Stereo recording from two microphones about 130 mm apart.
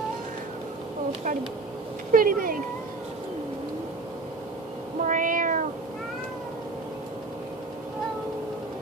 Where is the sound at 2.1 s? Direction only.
90° right.